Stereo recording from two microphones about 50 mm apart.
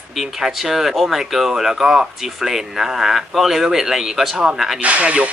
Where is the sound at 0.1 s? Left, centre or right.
Centre.